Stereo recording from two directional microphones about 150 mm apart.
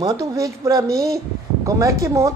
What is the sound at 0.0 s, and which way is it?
A woman's voice, 25° right (ahead or behind).